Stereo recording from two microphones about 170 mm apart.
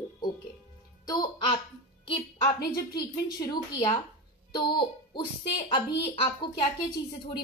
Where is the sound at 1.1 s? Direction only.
25° left (ahead or behind).